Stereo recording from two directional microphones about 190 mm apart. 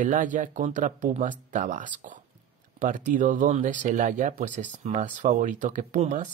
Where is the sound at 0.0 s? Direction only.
40° right (ahead or behind).